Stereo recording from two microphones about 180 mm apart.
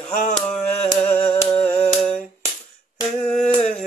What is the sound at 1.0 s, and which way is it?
Humming, 10° left (ahead or behind).